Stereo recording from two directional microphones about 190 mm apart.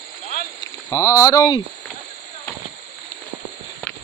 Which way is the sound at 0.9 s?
15° left (ahead or behind).